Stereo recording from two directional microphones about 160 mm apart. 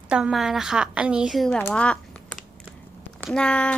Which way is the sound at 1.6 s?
5° left (ahead or behind).